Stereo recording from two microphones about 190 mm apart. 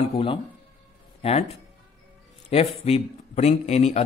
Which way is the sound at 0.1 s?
30° left (ahead or behind).